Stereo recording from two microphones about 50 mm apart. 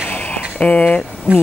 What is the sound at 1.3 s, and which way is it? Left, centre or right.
Speech, right.